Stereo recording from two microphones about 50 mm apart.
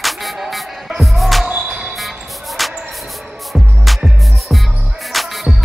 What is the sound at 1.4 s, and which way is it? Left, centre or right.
Music, right.